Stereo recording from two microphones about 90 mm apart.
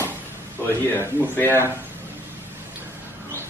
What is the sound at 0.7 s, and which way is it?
Speech, 25° left (ahead or behind).